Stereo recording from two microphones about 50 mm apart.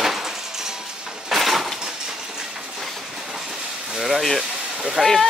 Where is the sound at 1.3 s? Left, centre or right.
Centre.